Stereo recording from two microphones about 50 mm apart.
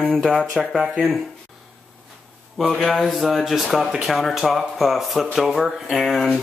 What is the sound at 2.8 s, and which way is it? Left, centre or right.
Speech, centre.